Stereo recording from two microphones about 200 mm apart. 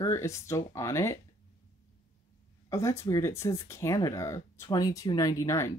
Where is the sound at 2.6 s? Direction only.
15° left (ahead or behind).